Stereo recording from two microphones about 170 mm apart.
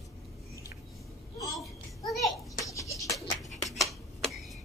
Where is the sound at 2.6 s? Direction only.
20° left (ahead or behind).